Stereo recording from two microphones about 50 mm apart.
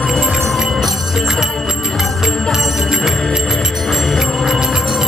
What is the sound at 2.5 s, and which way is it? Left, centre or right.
Music, centre.